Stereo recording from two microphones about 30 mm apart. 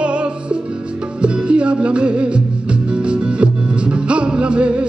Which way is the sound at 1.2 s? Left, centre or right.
Right.